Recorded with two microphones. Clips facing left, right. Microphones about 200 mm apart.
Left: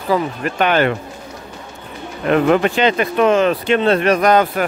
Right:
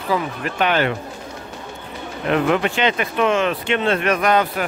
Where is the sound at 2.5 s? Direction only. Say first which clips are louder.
Left 4 dB; 40° left (ahead or behind).